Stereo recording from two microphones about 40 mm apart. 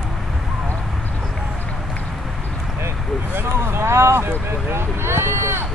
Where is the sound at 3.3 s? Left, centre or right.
Right.